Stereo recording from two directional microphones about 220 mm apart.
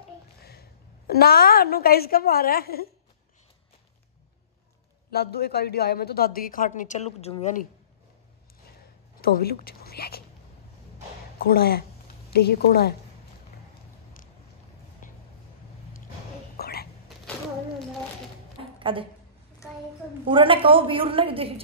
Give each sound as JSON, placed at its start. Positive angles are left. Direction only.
{"t": 0.4, "sound": "a woman's voice", "side_deg": 45}
{"t": 5.1, "sound": "a woman's voice", "side_deg": 45}
{"t": 9.2, "sound": "a woman's voice", "side_deg": 45}
{"t": 11.3, "sound": "a woman's voice", "side_deg": 45}
{"t": 15.0, "sound": "vehicle", "side_deg": 35}
{"t": 16.5, "sound": "whispering", "side_deg": 45}
{"t": 18.6, "sound": "a sound", "side_deg": -25}
{"t": 20.2, "sound": "a woman's voice", "side_deg": -25}